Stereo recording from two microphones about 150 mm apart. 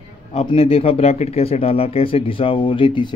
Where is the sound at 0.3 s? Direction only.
40° left (ahead or behind).